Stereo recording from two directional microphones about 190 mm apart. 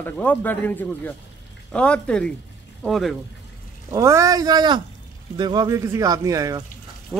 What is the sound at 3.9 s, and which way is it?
Speech, 15° right (ahead or behind).